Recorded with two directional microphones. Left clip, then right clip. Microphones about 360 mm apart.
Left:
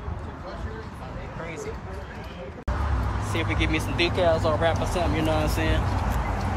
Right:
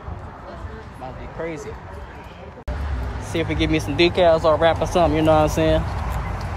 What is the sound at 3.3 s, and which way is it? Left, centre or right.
Speech, centre.